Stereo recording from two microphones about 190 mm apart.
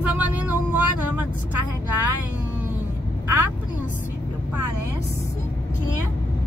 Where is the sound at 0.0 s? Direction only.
10° right (ahead or behind).